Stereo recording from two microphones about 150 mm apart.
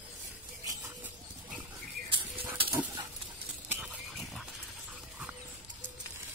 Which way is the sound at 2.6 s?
10° right (ahead or behind).